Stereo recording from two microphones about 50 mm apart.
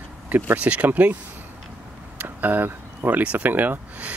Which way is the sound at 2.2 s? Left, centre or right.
Right.